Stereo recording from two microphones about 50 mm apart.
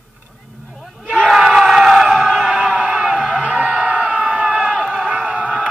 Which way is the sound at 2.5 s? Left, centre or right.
Right.